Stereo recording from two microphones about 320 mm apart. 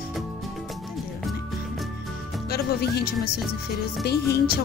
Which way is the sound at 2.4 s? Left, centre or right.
Left.